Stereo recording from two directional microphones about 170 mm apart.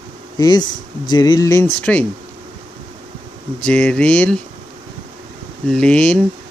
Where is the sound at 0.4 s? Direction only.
25° left (ahead or behind).